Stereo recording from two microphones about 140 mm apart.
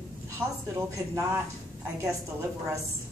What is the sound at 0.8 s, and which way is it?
Speech, 20° right (ahead or behind).